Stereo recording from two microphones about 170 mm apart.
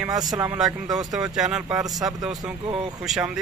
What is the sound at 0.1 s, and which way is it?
Speech, 20° right (ahead or behind).